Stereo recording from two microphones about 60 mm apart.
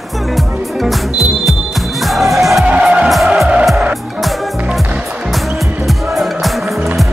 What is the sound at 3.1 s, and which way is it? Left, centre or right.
Music, centre.